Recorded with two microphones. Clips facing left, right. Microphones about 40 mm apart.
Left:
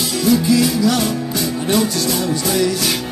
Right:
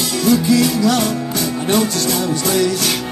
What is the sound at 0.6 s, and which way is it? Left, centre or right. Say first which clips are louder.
Music: right 1 dB; right.